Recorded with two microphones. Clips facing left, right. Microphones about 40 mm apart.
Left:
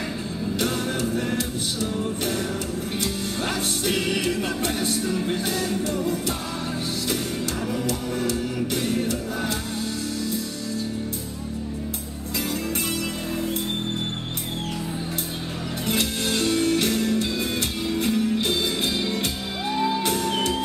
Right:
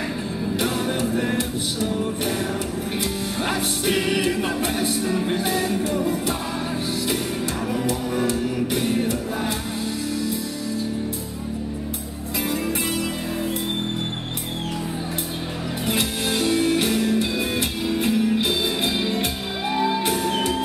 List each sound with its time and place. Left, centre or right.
0.6 s music: centre
7.7 s music: centre
15.9 s music: centre